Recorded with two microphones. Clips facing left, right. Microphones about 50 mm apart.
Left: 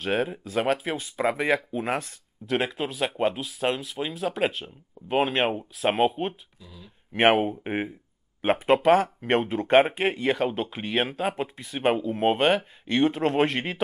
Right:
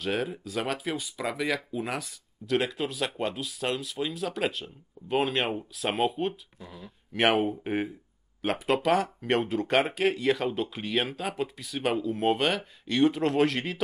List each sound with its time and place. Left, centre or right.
0.0 s speech: left
6.6 s speech: right
7.2 s speech: left